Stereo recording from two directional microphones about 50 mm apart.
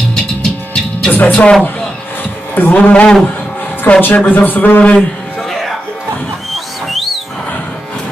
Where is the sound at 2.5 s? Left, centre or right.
Left.